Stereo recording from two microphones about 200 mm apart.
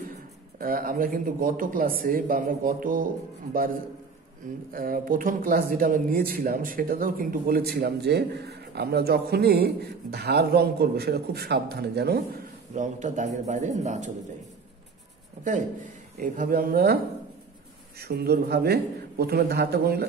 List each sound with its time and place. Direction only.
0.6 s speech: 45° right (ahead or behind)
4.7 s speech: 45° right (ahead or behind)
12.7 s a man's voice: 40° right (ahead or behind)
16.2 s speech: 45° right (ahead or behind)